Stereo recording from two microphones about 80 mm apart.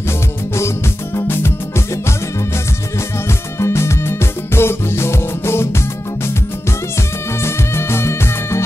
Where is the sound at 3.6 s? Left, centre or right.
Left.